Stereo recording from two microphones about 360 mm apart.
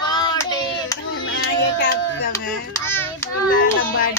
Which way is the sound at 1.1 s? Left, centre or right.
Left.